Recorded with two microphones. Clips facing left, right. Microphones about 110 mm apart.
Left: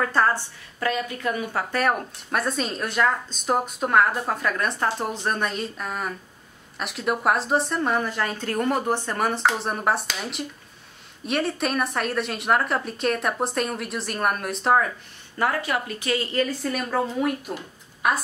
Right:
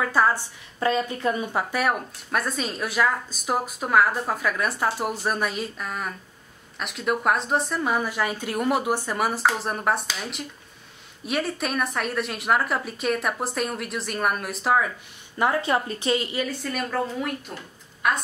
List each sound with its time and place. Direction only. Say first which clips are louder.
0.0 s speech: even; 5° right (ahead or behind)
0.7 s speech: right 2 dB; 25° right (ahead or behind)
1.7 s speech: left 1 dB; 5° right (ahead or behind)
15.3 s speech: right 2 dB; 20° right (ahead or behind)
16.4 s speech: left 2 dB; centre (ahead or behind)